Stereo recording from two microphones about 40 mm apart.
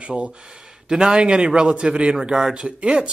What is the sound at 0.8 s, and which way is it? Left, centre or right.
A man's voice, right.